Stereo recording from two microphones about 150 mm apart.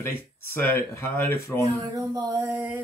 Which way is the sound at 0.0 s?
15° left (ahead or behind).